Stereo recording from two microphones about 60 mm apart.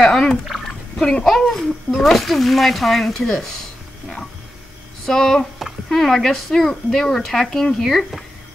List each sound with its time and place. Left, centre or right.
0.0 s a sound: centre
0.7 s speech: centre
5.0 s speech: centre